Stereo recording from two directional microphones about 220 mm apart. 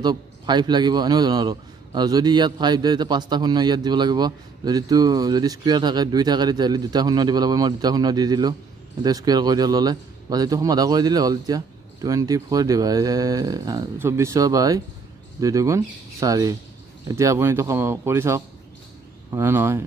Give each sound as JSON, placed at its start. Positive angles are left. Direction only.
{"t": 0.0, "sound": "a man's voice", "side_deg": -20}